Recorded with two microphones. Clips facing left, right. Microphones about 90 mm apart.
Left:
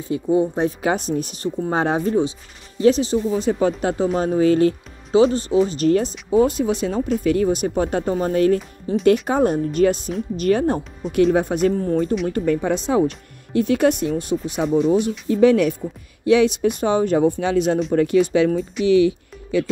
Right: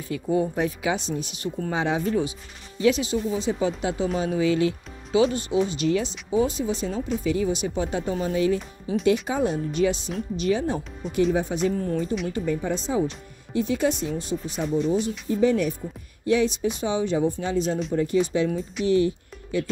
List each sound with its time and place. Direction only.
0.1 s speech: 25° left (ahead or behind)
0.8 s speech: 50° left (ahead or behind)
3.3 s speech: 50° left (ahead or behind)
8.5 s speech: centre (ahead or behind)
9.0 s speech: 50° left (ahead or behind)
11.0 s speech: centre (ahead or behind)
11.3 s speech: 55° left (ahead or behind)
11.7 s speech: 35° left (ahead or behind)
12.3 s speech: 65° left (ahead or behind)
17.4 s speech: 70° left (ahead or behind)
18.9 s speech: 90° left